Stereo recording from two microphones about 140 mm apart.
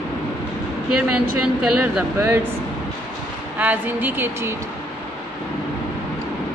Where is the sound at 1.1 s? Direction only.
5° right (ahead or behind).